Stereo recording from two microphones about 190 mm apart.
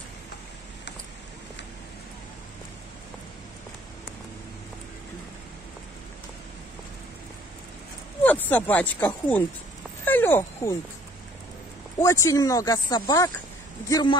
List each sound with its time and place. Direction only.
8.2 s speech: 10° left (ahead or behind)
10.0 s wild animals: 10° left (ahead or behind)
12.0 s speech: 15° left (ahead or behind)